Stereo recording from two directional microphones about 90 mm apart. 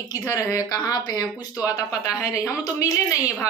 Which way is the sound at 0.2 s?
35° left (ahead or behind).